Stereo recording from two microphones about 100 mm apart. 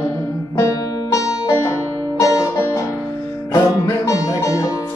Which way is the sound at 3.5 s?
40° left (ahead or behind).